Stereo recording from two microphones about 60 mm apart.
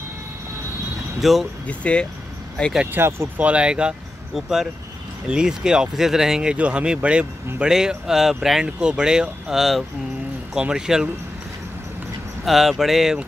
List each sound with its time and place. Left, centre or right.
1.2 s speech: centre
1.7 s speech: left
2.9 s speech: right
3.3 s speech: right
4.4 s speech: centre
6.5 s speech: centre
12.4 s speech: centre